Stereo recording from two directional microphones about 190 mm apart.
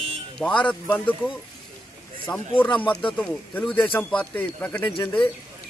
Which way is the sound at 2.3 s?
5° left (ahead or behind).